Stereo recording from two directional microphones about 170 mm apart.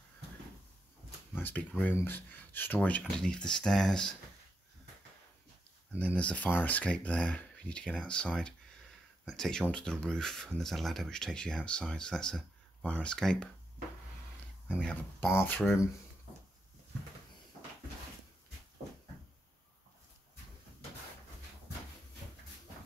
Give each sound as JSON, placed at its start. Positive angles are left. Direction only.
{"t": 1.3, "sound": "speech", "side_deg": 10}
{"t": 5.9, "sound": "speech", "side_deg": 10}
{"t": 14.7, "sound": "speech", "side_deg": 5}